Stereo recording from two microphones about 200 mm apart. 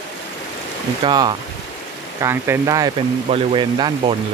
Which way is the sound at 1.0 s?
25° right (ahead or behind).